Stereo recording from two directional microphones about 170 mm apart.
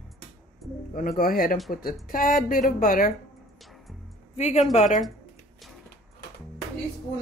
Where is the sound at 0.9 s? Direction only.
55° left (ahead or behind).